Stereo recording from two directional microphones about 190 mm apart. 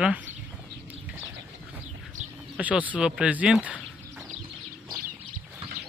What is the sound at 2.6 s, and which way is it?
Speech, 5° right (ahead or behind).